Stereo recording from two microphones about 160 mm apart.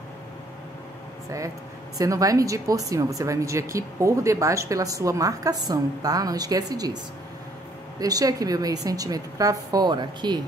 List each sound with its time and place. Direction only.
2.0 s speech: 20° right (ahead or behind)
8.0 s speech: 20° right (ahead or behind)